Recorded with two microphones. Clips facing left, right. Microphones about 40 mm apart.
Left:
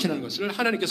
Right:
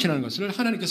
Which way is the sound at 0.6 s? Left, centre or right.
Left.